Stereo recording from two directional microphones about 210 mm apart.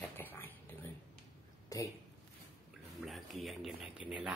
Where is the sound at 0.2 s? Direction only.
10° left (ahead or behind).